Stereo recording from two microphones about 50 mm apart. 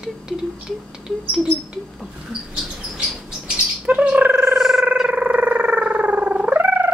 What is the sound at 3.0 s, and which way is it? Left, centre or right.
Chirp, right.